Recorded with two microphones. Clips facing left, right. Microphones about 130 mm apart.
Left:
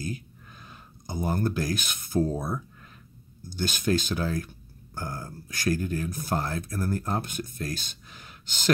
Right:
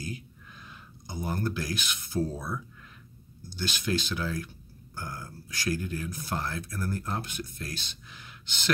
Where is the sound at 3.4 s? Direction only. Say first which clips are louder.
Left 4 dB; 50° left (ahead or behind).